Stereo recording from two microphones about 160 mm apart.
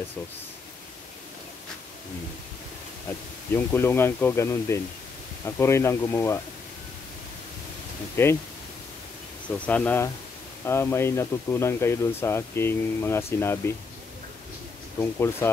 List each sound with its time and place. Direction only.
3.5 s speech: 15° left (ahead or behind)
8.2 s speech: 15° left (ahead or behind)
9.5 s speech: 10° left (ahead or behind)
15.0 s speech: 15° left (ahead or behind)